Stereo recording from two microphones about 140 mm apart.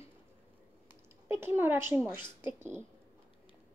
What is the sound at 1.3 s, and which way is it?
Speech, 15° right (ahead or behind).